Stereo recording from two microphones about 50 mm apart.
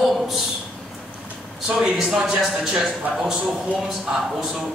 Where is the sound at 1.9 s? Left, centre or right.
Centre.